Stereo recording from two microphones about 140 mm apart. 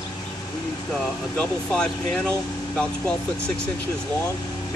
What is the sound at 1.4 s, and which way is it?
Speech, 5° left (ahead or behind).